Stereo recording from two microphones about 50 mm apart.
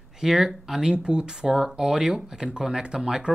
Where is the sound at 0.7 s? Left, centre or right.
Centre.